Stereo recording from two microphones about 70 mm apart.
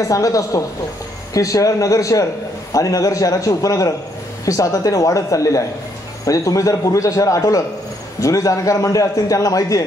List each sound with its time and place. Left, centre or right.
0.1 s a man's voice: left